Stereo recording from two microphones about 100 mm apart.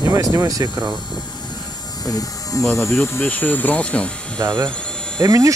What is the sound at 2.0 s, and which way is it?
Electric shaver, 40° left (ahead or behind).